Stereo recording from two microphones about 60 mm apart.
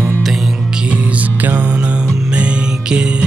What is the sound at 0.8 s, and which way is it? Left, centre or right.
Music, right.